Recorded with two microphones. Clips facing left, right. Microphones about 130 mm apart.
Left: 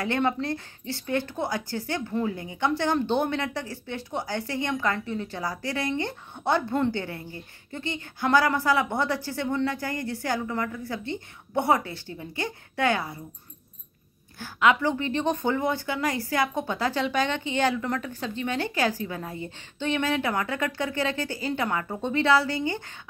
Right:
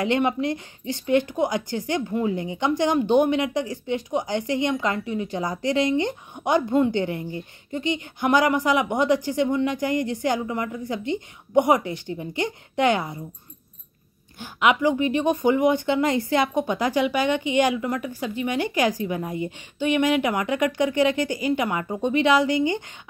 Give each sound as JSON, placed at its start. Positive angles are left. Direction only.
{"t": 0.0, "sound": "speech", "side_deg": -20}
{"t": 14.4, "sound": "speech", "side_deg": -15}